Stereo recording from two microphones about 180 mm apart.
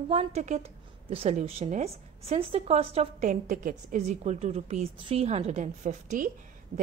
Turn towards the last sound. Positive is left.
turn(degrees=-45)  # may be behind; listen again after turning